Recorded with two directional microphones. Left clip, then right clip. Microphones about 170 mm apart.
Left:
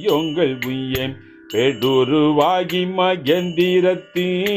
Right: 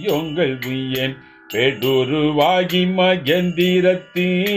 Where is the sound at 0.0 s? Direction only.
35° left (ahead or behind).